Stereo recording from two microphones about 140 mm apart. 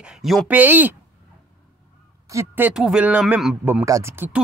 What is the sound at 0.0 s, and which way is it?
Speech, 5° right (ahead or behind).